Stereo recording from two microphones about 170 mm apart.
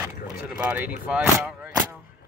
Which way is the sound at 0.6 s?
5° right (ahead or behind).